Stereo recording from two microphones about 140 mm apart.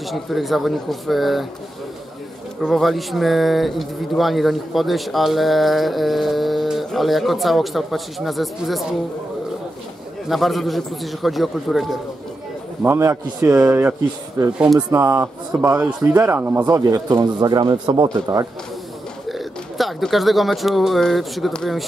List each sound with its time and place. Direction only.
0.1 s speech: centre (ahead or behind)
2.6 s speech: centre (ahead or behind)
10.2 s speech: centre (ahead or behind)
12.8 s a man's voice: 15° right (ahead or behind)
14.4 s speech: 30° right (ahead or behind)
19.2 s speech: centre (ahead or behind)